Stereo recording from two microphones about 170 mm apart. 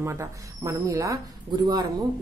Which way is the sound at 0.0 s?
15° right (ahead or behind).